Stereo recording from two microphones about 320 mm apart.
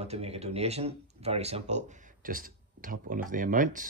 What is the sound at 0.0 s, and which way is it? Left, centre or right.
Speech, centre.